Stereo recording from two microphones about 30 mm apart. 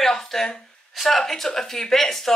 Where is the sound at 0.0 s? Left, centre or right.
Centre.